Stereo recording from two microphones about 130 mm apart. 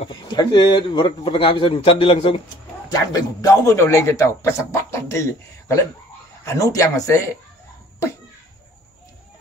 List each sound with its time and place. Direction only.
0.0 s a man's voice: 35° left (ahead or behind)
2.9 s a man's voice: 30° left (ahead or behind)
6.4 s a man's voice: 25° left (ahead or behind)